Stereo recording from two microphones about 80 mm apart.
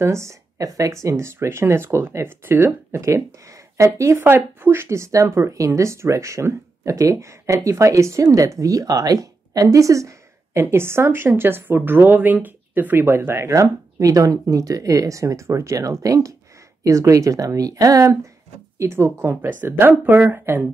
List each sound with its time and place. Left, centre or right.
0.0 s speech: right
19.6 s speech: right